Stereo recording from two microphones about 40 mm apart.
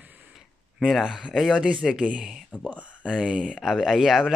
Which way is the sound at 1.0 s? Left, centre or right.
Centre.